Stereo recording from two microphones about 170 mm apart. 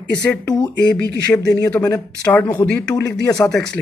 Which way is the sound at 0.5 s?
25° left (ahead or behind).